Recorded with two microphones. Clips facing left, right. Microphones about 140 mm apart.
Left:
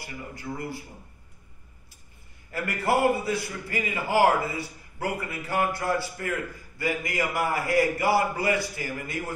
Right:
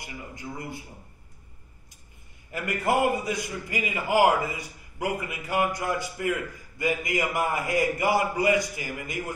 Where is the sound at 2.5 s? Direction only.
15° right (ahead or behind).